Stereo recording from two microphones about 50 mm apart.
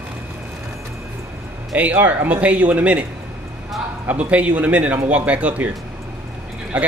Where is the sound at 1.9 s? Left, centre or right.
Right.